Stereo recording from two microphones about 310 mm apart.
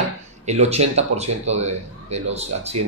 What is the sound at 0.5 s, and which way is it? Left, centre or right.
A man's voice, right.